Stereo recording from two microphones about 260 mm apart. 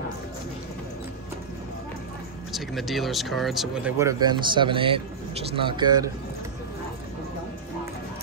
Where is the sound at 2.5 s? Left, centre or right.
Centre.